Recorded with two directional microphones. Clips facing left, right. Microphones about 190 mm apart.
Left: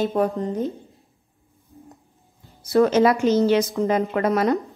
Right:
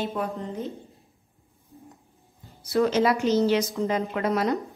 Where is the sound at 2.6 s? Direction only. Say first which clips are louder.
Left 5 dB; 50° left (ahead or behind).